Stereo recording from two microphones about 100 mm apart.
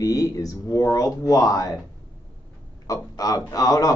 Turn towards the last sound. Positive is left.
turn(degrees=35)  # may be behind; listen again after turning